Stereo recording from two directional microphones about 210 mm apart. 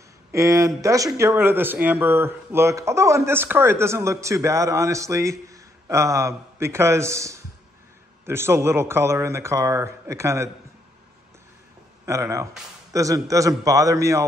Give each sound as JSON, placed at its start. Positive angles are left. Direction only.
{"t": 0.3, "sound": "speech", "side_deg": -15}
{"t": 12.1, "sound": "speech", "side_deg": -15}